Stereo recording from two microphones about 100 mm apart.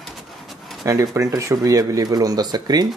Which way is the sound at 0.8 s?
30° right (ahead or behind).